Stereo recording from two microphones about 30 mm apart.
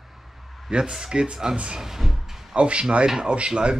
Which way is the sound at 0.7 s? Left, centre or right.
Right.